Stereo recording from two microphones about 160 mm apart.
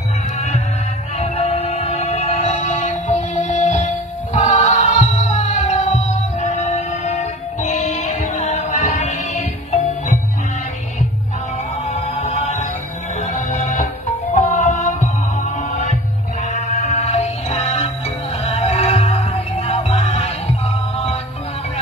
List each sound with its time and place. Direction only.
1.1 s music: 40° left (ahead or behind)
11.8 s music: 40° left (ahead or behind)